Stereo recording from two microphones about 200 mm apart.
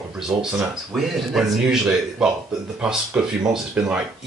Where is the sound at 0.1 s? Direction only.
5° right (ahead or behind).